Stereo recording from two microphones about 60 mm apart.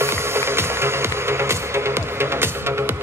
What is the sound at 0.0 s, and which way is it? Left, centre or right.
Music, right.